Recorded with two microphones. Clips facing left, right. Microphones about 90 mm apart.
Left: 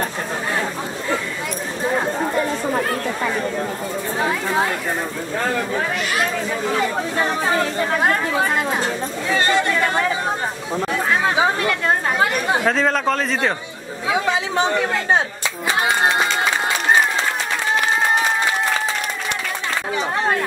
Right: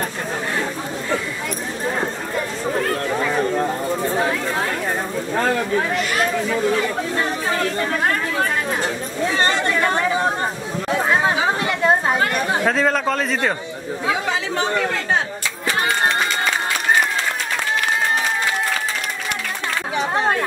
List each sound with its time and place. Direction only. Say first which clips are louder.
5.9 s a sound: right 1 dB; 10° left (ahead or behind)
8.0 s chatter: left 3 dB; 15° left (ahead or behind)
10.9 s chatter: right 3 dB; 20° right (ahead or behind)
12.6 s a man's voice: right 1 dB; centre (ahead or behind)
14.6 s chatter: left 2 dB; 20° left (ahead or behind)